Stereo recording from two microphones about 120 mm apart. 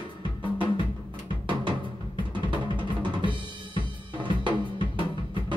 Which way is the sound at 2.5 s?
40° right (ahead or behind).